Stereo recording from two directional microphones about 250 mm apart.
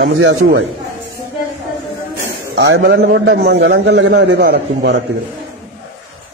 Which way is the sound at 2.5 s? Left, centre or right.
Right.